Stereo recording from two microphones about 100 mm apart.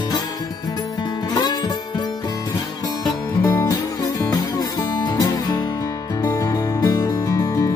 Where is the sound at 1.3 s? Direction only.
45° left (ahead or behind).